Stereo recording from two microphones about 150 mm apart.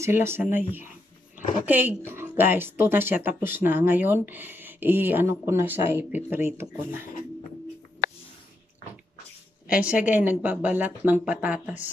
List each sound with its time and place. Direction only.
0.0 s a woman's voice: 15° right (ahead or behind)
10.0 s a woman's voice: 10° right (ahead or behind)